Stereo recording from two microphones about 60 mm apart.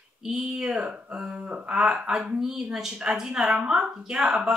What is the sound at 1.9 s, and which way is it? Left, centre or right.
Speech, centre.